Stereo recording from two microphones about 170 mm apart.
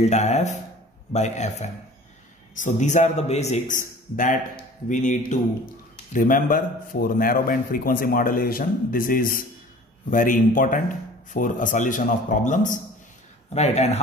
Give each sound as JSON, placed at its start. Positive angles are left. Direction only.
{"t": 0.0, "sound": "a man's voice", "side_deg": 40}